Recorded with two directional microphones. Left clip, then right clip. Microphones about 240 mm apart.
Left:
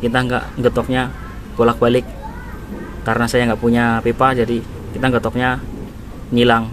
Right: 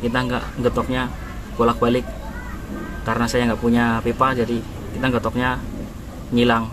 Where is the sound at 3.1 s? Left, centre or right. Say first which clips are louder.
Left 4 dB; centre.